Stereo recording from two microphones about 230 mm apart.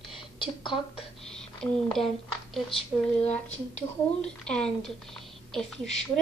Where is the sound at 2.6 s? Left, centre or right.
Left.